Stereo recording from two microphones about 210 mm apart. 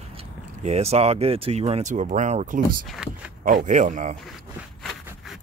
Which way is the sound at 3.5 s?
35° right (ahead or behind).